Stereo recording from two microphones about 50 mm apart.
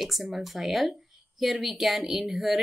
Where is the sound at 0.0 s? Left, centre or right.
Centre.